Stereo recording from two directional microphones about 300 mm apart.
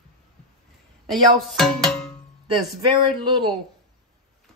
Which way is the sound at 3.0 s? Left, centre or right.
Centre.